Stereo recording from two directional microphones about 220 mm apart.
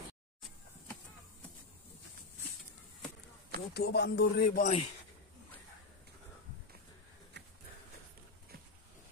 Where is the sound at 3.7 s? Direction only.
50° left (ahead or behind).